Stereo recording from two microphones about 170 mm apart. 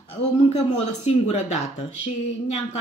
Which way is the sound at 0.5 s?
40° left (ahead or behind).